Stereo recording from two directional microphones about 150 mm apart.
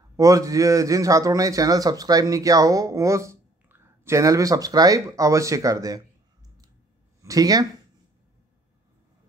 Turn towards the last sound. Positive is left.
turn(degrees=-25)  # may be behind; listen again after turning